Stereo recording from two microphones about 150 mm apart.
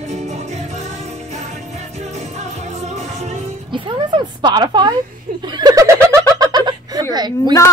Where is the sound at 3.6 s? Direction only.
30° right (ahead or behind).